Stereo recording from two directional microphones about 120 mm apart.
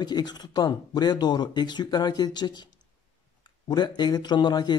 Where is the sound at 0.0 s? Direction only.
35° left (ahead or behind).